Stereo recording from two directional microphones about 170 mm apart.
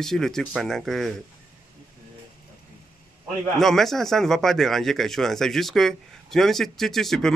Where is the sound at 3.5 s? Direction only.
Centre (ahead or behind).